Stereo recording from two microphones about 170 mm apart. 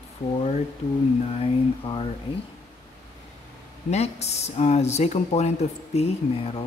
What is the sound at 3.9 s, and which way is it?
Speech, 40° left (ahead or behind).